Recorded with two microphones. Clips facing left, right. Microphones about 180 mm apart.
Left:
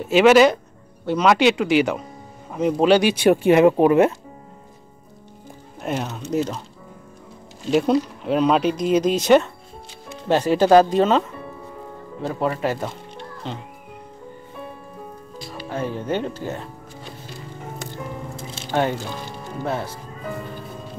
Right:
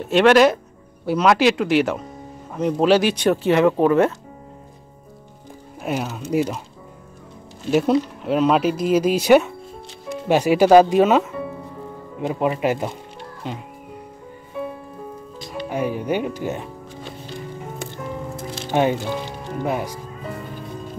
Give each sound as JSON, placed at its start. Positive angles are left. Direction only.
{"t": 0.0, "sound": "speech", "side_deg": 5}
{"t": 3.3, "sound": "speech", "side_deg": 15}
{"t": 5.8, "sound": "speech", "side_deg": -5}
{"t": 7.7, "sound": "speech", "side_deg": -5}
{"t": 15.4, "sound": "speech", "side_deg": -15}
{"t": 18.7, "sound": "speech", "side_deg": -15}